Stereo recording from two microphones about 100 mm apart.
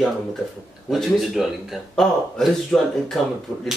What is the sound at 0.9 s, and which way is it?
Speech, centre (ahead or behind).